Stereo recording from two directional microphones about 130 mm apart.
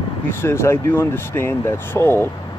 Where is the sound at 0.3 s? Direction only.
20° left (ahead or behind).